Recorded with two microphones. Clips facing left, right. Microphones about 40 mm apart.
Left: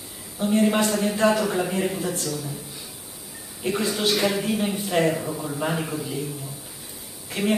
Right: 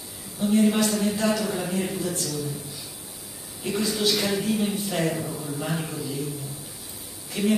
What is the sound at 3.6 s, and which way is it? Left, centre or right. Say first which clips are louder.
Speech: left 1 dB; left.